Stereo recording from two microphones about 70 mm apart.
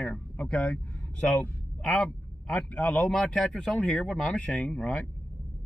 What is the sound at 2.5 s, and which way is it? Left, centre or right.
Speech, centre.